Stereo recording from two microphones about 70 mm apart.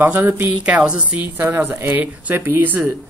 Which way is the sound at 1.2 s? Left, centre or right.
Right.